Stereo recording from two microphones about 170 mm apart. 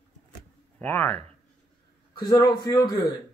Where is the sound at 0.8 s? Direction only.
10° left (ahead or behind).